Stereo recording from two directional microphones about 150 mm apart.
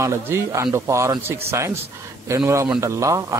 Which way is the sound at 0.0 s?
20° right (ahead or behind).